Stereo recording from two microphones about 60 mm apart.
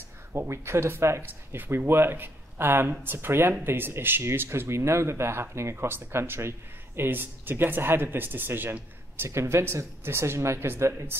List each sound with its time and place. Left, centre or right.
0.3 s speech: right
4.2 s speech: right
9.2 s speech: right